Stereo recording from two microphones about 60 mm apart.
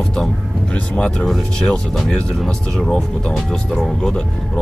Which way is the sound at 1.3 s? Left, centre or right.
Centre.